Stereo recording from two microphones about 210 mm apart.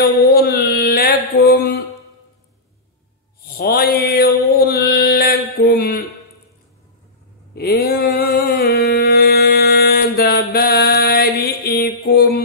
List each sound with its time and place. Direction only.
0.0 s mantra: 50° left (ahead or behind)
3.5 s mantra: 50° left (ahead or behind)
5.7 s speech: 45° left (ahead or behind)
7.5 s a sound: 50° left (ahead or behind)